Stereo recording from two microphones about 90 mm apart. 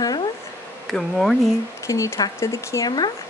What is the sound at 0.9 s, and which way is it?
Speech, 5° left (ahead or behind).